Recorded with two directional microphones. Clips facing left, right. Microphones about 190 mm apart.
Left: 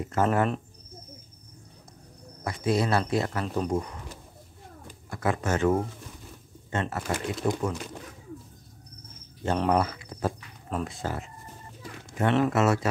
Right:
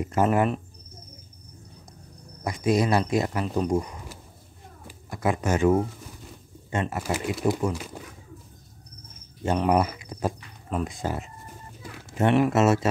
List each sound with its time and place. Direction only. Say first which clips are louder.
0.0 s speech: right 2 dB; 15° right (ahead or behind)
2.4 s speech: right 3 dB; 15° right (ahead or behind)
9.6 s speech: right 2 dB; 15° right (ahead or behind)